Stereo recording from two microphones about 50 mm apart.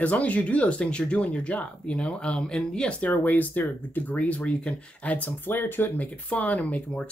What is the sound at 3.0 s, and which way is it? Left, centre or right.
Speech, left.